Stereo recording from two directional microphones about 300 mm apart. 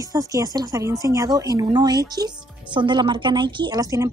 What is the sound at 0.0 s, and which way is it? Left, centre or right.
A woman's voice, centre.